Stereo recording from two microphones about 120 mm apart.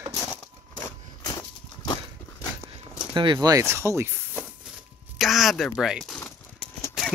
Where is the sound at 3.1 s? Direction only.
40° right (ahead or behind); by 4.1 s 20° right (ahead or behind).